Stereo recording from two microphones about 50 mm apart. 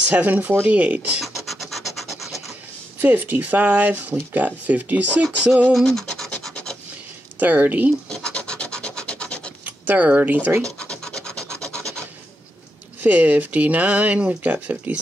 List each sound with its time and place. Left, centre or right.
0.1 s speech: right
1.2 s scratch: centre
3.0 s speech: right
5.9 s scratch: centre
7.3 s speech: right
8.1 s rub: centre
9.7 s speech: right
10.8 s rub: centre
13.0 s speech: right